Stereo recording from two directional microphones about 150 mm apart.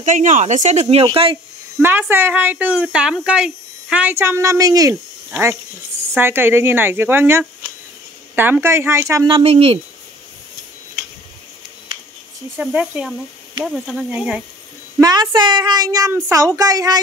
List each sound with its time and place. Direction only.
0.0 s speech: 55° right (ahead or behind); by 1.4 s 35° right (ahead or behind)
1.8 s a woman's voice: 15° right (ahead or behind)
9.3 s speech: 40° right (ahead or behind)
12.5 s a woman's voice: 10° right (ahead or behind)
15.0 s a woman's voice: 25° right (ahead or behind)